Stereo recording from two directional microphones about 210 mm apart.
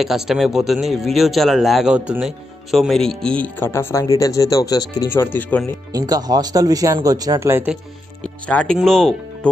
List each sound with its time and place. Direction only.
0.0 s speech: centre (ahead or behind)
5.9 s speech: 20° right (ahead or behind)
8.2 s speech: 5° left (ahead or behind)